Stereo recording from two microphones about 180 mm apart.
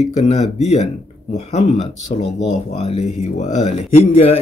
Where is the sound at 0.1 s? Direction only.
40° left (ahead or behind).